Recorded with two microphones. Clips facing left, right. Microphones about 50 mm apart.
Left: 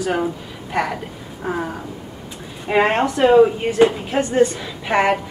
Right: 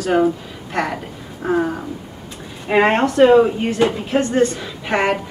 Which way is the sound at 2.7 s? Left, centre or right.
Centre.